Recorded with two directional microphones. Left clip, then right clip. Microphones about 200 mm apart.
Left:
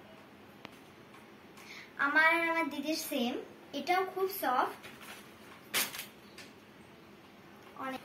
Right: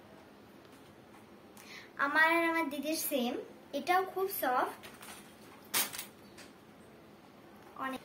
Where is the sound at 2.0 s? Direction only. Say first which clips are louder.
Left 1 dB; 35° right (ahead or behind).